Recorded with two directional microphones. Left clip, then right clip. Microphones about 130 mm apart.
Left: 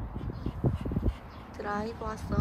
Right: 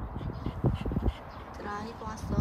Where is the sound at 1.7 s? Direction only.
15° right (ahead or behind).